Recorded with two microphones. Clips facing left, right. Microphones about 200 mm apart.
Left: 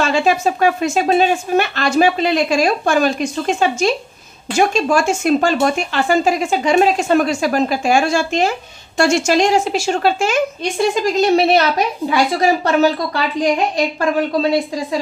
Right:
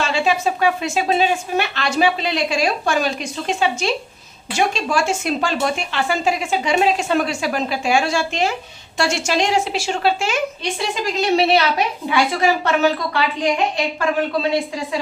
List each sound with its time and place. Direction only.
0.0 s a woman's voice: 45° left (ahead or behind)